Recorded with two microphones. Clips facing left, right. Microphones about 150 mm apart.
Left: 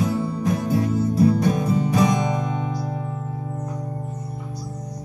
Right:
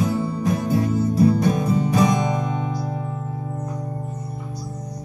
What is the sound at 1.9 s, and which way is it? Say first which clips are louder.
Music: right 1 dB; 40° right (ahead or behind).